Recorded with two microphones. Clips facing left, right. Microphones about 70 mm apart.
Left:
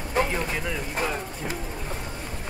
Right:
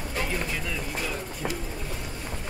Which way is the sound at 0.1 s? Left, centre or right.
Left.